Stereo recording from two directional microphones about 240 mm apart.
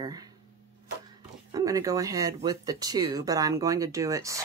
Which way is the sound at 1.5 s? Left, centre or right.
Centre.